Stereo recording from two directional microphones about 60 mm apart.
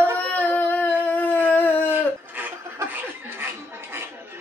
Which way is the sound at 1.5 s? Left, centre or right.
Left.